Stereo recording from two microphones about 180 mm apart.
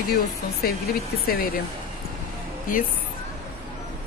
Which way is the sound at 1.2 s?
55° left (ahead or behind).